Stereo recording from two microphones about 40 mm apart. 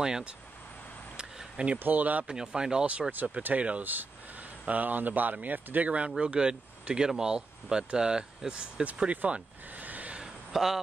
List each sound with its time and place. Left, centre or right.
1.1 s a sound: right
1.8 s speech: right
2.2 s speech: centre
3.1 s speech: right
3.5 s speech: right
3.8 s speech: right; by 8.8 s centre
8.8 s speech: right
9.3 s a sound: right
10.2 s a sound: centre